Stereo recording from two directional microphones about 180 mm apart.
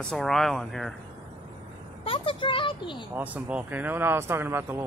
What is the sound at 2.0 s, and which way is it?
A child's voice, 30° left (ahead or behind).